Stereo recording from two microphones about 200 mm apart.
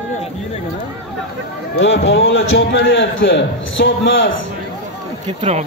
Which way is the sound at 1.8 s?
70° left (ahead or behind).